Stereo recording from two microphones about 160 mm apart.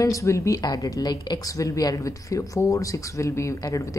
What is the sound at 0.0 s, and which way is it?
Speech, 20° left (ahead or behind).